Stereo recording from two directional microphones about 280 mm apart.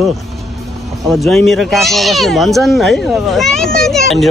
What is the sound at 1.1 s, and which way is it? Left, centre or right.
Speech, centre.